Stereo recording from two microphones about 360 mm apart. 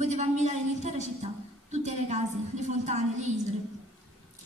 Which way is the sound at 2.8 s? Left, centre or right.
Centre.